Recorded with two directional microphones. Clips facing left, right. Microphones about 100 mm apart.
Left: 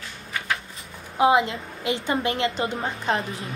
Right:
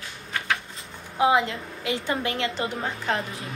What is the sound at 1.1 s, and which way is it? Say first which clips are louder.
A woman's voice: left 2 dB; 25° left (ahead or behind).